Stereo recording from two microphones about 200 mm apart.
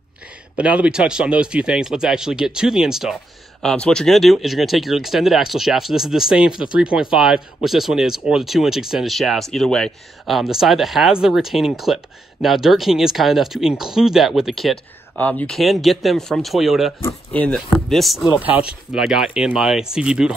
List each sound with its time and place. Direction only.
0.6 s speech: 5° right (ahead or behind)